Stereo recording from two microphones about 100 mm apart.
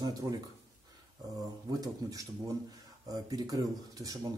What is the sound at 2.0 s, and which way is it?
Speech, 40° right (ahead or behind).